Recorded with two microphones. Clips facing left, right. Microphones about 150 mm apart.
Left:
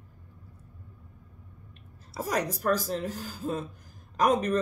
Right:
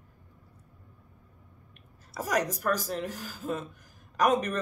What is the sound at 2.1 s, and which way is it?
Speech, 30° left (ahead or behind).